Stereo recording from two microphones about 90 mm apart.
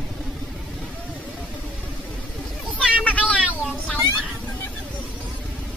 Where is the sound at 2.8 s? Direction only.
15° right (ahead or behind).